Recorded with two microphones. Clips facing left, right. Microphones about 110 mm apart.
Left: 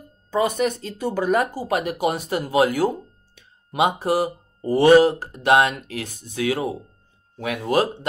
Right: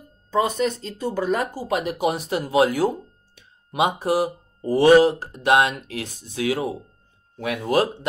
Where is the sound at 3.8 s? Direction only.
60° left (ahead or behind).